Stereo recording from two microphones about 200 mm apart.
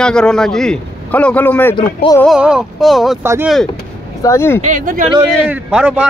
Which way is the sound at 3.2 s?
15° right (ahead or behind).